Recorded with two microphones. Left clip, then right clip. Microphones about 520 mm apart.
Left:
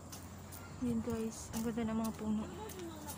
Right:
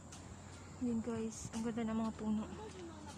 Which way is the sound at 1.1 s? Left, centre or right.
Right.